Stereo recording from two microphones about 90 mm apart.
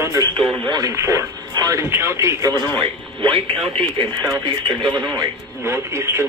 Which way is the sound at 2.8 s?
80° right.